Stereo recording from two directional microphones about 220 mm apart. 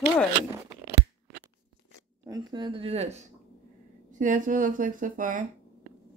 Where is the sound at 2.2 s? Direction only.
20° right (ahead or behind); by 5.5 s 35° right (ahead or behind).